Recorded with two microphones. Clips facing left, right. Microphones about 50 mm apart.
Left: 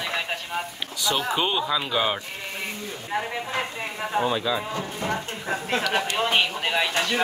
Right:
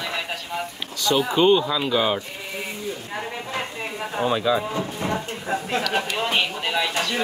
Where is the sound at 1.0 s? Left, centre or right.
Centre.